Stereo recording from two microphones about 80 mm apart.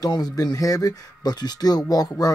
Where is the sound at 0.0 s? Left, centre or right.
Left.